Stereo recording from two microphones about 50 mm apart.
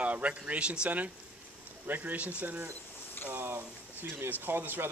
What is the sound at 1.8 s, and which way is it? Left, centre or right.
Speech, right.